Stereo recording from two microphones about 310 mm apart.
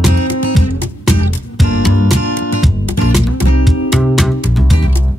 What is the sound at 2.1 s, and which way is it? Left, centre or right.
Music, left.